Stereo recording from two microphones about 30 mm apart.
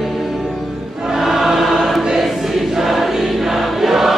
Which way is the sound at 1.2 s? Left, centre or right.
Centre.